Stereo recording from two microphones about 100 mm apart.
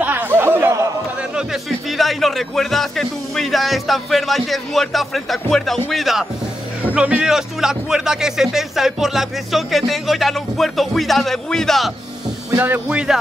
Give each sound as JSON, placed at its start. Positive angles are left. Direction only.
{"t": 0.0, "sound": "a sound", "side_deg": -20}
{"t": 1.3, "sound": "a man's voice", "side_deg": 0}
{"t": 6.8, "sound": "a man's voice", "side_deg": -15}
{"t": 12.5, "sound": "speech", "side_deg": -20}